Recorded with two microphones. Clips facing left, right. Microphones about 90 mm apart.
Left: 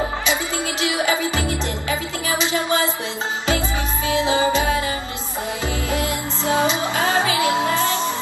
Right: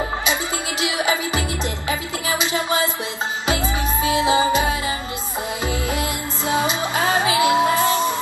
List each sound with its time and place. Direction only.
0.7 s music: 20° right (ahead or behind)
4.0 s music: 20° right (ahead or behind)
5.9 s music: 20° right (ahead or behind)